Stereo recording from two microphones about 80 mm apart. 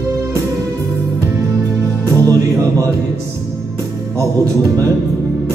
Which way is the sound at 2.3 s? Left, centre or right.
Right.